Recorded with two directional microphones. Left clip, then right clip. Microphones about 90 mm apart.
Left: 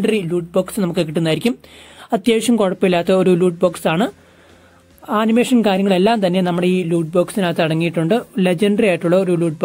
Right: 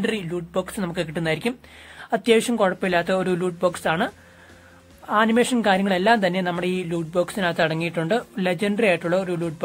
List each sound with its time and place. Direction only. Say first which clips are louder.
0.0 s speech: left 8 dB; 35° left (ahead or behind)
5.1 s speech: left 3 dB; 35° left (ahead or behind)